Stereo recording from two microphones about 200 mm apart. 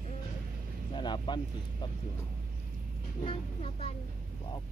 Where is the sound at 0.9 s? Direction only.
20° left (ahead or behind).